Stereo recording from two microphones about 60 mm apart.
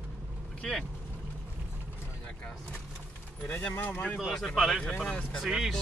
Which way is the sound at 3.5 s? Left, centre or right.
Left.